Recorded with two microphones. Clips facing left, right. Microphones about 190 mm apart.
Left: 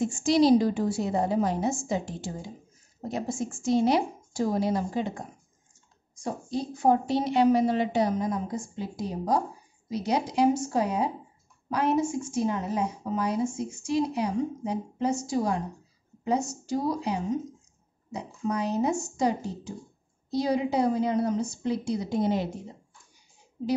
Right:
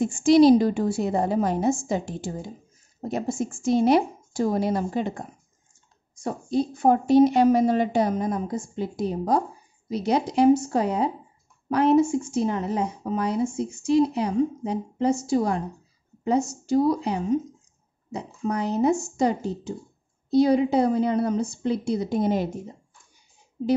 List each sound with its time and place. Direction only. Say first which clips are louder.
0.0 s a woman's voice: right 6 dB; 55° right (ahead or behind)
6.2 s a woman's voice: right 6 dB; 55° right (ahead or behind)
18.1 s a woman's voice: right 2 dB; 60° right (ahead or behind)